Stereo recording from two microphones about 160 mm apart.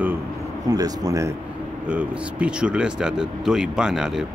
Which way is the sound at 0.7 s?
25° right (ahead or behind).